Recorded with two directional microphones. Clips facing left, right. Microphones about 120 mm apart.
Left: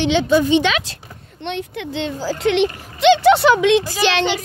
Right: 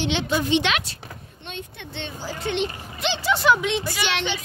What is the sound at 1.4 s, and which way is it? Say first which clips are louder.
A woman's voice: left 12 dB; 80° left.